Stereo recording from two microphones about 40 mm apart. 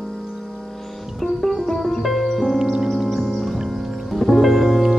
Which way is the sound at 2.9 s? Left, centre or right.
Centre.